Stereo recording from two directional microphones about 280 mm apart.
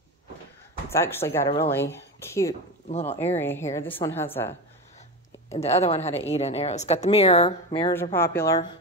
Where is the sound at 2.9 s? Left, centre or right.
Left.